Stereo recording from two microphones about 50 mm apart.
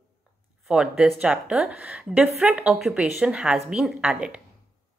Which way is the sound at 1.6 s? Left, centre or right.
Right.